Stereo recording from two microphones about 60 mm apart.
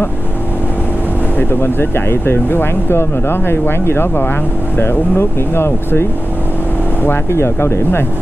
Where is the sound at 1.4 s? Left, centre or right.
Left.